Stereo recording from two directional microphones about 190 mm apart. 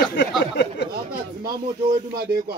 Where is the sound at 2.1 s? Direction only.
50° right (ahead or behind).